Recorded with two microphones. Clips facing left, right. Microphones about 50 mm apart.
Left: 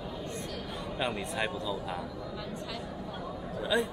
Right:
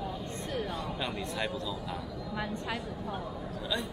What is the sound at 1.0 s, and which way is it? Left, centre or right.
Speech, centre.